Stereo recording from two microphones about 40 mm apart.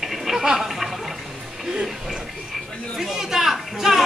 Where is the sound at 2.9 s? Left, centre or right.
Centre.